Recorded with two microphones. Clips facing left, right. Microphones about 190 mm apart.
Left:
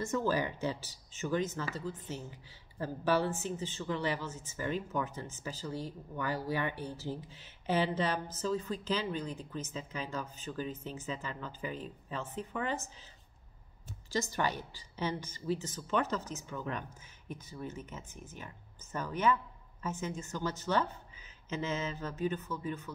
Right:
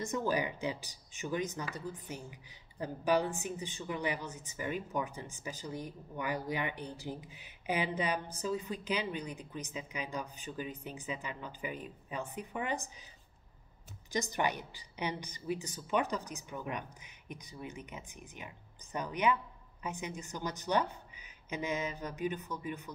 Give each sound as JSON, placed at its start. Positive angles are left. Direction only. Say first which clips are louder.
{"t": 0.0, "sound": "speech", "louder": "left 1 dB", "side_deg": -15}
{"t": 14.1, "sound": "speech", "louder": "even", "side_deg": -20}